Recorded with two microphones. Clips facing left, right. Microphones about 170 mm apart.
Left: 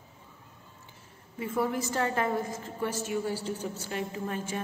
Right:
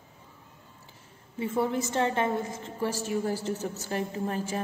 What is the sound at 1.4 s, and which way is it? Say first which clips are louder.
A woman's voice: right 2 dB; 25° right (ahead or behind).